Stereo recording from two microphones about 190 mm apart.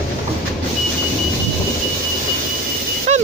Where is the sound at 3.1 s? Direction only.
35° right (ahead or behind).